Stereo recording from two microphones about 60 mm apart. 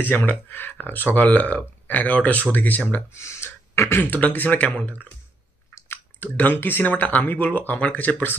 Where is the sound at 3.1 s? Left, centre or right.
Left.